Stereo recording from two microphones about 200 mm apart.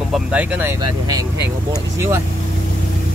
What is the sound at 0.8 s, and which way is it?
Speech, 20° right (ahead or behind).